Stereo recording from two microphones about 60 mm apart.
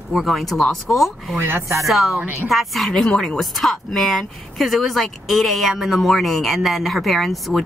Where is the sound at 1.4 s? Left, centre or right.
Right.